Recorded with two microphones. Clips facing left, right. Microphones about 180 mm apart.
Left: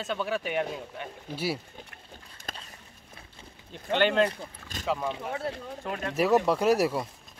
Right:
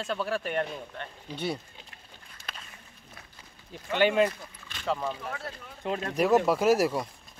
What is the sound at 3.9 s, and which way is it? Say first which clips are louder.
Speech: even; 5° right (ahead or behind).